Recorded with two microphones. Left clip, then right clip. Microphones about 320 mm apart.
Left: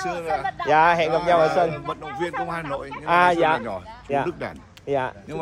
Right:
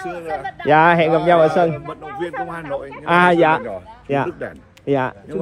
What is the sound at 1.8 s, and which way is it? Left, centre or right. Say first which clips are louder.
Speech: right 1 dB; centre.